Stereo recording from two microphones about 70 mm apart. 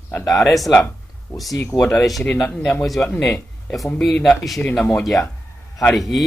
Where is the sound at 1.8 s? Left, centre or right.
Centre.